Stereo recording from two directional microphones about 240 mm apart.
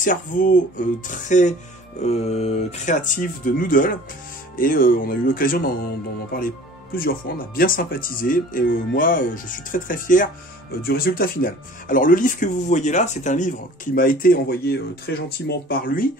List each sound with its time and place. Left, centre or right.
0.0 s speech: left